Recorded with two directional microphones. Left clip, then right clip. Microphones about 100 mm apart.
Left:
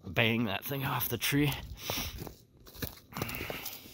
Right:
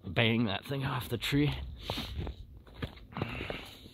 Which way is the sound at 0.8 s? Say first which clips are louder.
Left 2 dB; 25° left (ahead or behind).